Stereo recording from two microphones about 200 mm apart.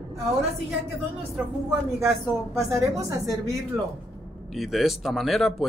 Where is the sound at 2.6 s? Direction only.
15° right (ahead or behind).